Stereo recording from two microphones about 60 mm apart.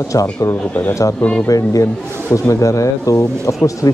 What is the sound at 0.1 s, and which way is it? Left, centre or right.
Speech, left.